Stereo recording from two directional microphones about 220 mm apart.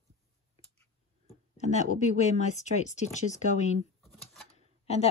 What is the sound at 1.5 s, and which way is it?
Speech, 30° left (ahead or behind).